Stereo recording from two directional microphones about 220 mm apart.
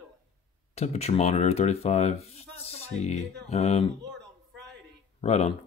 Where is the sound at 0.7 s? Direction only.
30° left (ahead or behind).